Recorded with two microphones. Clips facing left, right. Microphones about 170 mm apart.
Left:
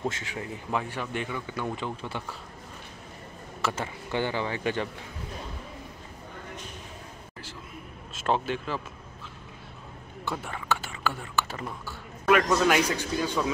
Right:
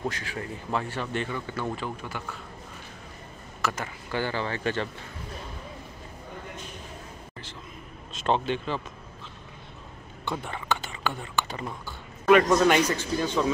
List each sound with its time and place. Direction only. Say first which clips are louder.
0.1 s a man's voice: right 1 dB; 20° left (ahead or behind)
1.8 s a man's voice: left 1 dB; 30° left (ahead or behind)
3.6 s speech: even; 25° left (ahead or behind)
8.1 s speech: right 2 dB; 5° left (ahead or behind)
10.2 s speech: right 1 dB; 5° left (ahead or behind)